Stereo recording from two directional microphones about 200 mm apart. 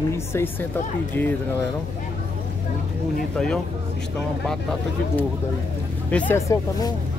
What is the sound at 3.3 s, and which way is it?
Speech, 5° left (ahead or behind).